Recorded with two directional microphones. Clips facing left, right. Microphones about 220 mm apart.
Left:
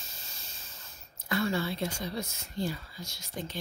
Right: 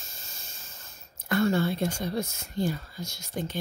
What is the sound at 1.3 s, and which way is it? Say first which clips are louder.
Speech: right 6 dB; 45° right (ahead or behind).